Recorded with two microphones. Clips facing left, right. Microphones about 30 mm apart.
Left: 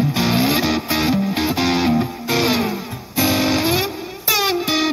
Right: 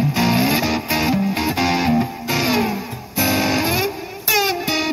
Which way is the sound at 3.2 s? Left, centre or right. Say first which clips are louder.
Left 1 dB; centre.